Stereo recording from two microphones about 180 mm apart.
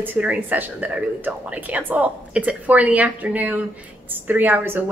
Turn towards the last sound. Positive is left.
turn(degrees=-10)  # may be behind; listen again after turning